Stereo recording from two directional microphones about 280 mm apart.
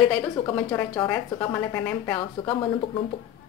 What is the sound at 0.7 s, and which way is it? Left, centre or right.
A woman's voice, centre.